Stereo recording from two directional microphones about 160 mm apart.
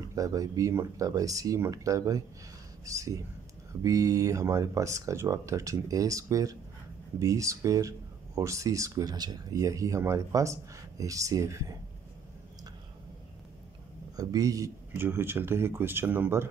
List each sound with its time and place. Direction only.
0.1 s speech: 20° right (ahead or behind)
14.1 s speech: 25° right (ahead or behind)